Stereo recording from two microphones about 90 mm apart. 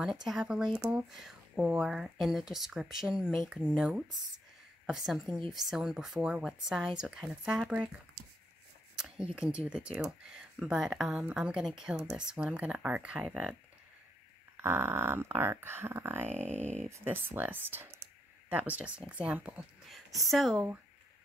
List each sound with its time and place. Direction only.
0.0 s speech: 5° right (ahead or behind)
8.9 s speech: 10° right (ahead or behind)
14.6 s speech: 25° right (ahead or behind)
20.2 s speech: centre (ahead or behind)